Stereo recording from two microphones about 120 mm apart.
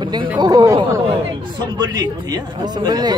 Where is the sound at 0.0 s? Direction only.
40° right (ahead or behind).